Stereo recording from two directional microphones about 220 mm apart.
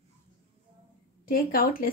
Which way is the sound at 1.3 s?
40° left (ahead or behind).